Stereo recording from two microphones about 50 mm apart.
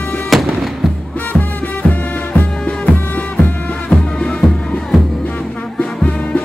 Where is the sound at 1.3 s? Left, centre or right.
Left.